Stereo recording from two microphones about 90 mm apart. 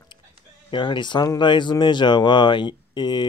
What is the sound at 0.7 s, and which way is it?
Speech, 60° left (ahead or behind).